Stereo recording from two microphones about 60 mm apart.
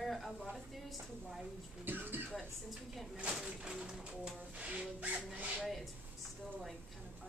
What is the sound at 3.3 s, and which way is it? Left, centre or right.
Music, centre.